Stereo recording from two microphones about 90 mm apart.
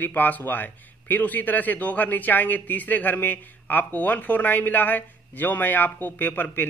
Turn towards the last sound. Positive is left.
turn(degrees=20)  # may be behind; listen again after turning